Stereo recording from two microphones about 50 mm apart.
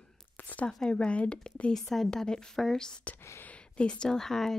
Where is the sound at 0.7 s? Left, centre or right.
Centre.